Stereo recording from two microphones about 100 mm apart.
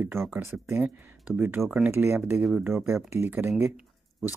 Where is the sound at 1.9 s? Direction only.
25° right (ahead or behind).